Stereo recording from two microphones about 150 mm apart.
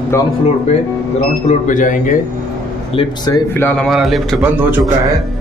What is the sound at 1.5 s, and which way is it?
Speech, 60° left (ahead or behind).